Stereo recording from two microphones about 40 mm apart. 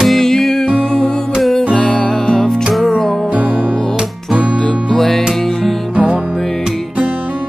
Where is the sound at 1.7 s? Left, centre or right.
Centre.